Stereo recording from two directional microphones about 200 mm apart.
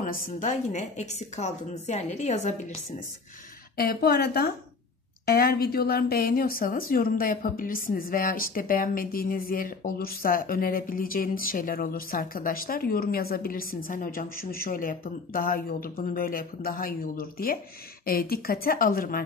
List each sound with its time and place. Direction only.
0.0 s a woman's voice: 40° left (ahead or behind)
3.7 s a woman's voice: 50° left (ahead or behind)